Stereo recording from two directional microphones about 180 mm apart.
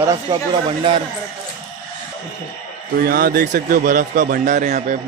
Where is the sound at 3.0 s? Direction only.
55° right (ahead or behind).